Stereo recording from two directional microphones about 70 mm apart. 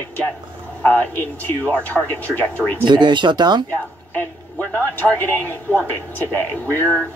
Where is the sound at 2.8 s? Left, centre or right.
Right.